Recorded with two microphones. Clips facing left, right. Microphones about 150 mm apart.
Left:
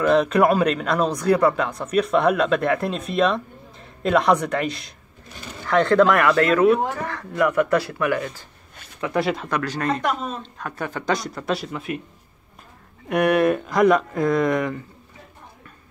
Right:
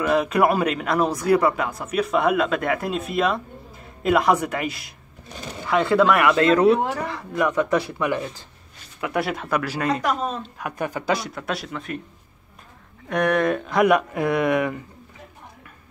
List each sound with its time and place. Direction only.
0.0 s speech: 5° right (ahead or behind)
6.4 s speech: 25° right (ahead or behind)
7.1 s speech: 15° right (ahead or behind)
9.0 s speech: 5° right (ahead or behind)
13.1 s speech: 10° left (ahead or behind); by 14.8 s 10° right (ahead or behind)